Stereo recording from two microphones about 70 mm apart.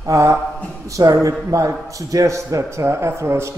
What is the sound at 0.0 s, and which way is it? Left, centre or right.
A man's voice, right.